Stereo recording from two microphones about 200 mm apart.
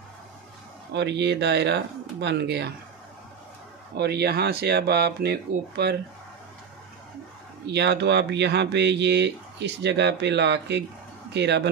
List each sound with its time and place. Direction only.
0.9 s speech: 60° right (ahead or behind)
3.9 s speech: 55° right (ahead or behind)
7.6 s speech: 55° right (ahead or behind)